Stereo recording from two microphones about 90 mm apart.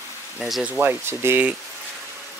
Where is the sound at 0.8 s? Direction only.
30° right (ahead or behind).